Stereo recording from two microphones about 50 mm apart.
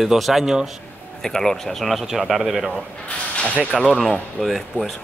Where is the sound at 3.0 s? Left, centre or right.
Left.